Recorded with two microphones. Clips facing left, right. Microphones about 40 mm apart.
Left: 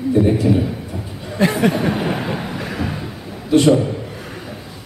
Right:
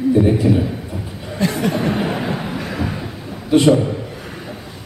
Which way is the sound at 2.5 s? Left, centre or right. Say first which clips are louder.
Right 1 dB; centre.